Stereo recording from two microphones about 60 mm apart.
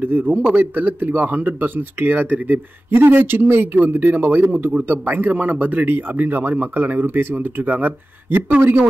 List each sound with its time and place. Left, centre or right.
0.0 s a man's voice: right